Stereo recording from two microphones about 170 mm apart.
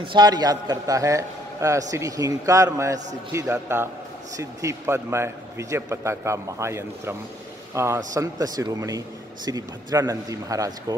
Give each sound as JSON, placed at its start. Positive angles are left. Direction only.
{"t": 0.0, "sound": "a man's voice", "side_deg": -25}